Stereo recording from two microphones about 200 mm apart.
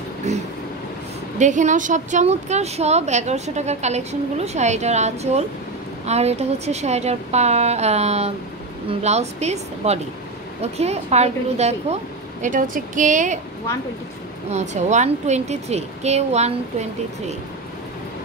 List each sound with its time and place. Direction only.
0.3 s vehicle: 35° right (ahead or behind)
1.4 s a woman's voice: 35° right (ahead or behind)
14.5 s a woman's voice: 35° right (ahead or behind)